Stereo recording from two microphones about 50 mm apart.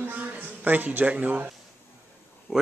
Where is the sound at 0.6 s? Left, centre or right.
Right.